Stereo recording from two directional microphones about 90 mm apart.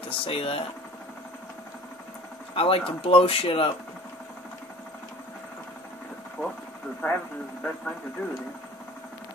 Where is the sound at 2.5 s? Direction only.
90° left.